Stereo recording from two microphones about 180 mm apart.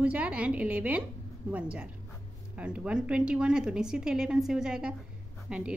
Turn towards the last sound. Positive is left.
turn(degrees=-5)  # may be behind; listen again after turning